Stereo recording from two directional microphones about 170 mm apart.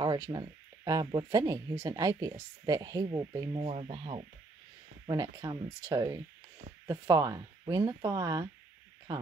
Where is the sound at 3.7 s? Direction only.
30° right (ahead or behind).